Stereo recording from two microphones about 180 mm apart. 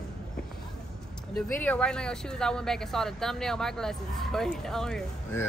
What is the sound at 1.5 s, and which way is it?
Speech, 10° left (ahead or behind).